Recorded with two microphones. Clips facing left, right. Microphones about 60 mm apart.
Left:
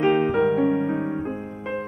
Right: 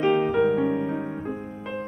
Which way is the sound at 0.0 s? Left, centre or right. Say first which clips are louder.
Left 1 dB; centre.